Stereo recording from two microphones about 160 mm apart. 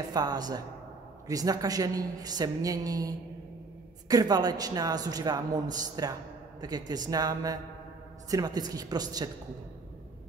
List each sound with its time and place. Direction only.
0.1 s a man's voice: 25° right (ahead or behind)